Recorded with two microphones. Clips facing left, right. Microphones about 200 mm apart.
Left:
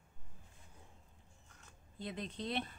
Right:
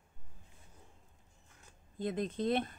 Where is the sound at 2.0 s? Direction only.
50° right (ahead or behind).